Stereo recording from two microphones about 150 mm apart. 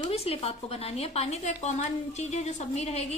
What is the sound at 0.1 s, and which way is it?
A woman's voice, 40° left (ahead or behind).